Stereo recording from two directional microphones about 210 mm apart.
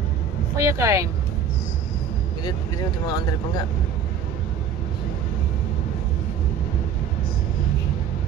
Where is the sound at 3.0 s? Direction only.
20° left (ahead or behind).